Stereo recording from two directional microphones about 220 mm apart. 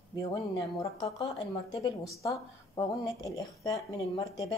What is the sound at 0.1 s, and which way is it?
A woman's voice, 15° left (ahead or behind).